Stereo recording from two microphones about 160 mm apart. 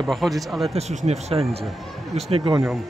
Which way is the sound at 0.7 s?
40° right (ahead or behind).